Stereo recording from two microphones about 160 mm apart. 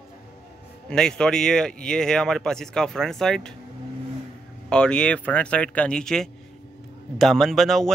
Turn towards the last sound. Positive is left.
turn(degrees=0)  # may be behind; listen again after turning